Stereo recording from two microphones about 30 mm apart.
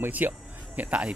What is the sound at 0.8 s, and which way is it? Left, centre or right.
Speech, right.